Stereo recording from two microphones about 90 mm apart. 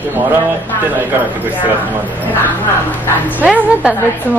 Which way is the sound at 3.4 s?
10° right (ahead or behind).